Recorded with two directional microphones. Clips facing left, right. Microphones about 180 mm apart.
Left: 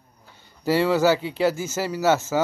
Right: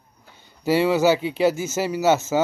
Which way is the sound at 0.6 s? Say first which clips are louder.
Right 1 dB; 15° right (ahead or behind).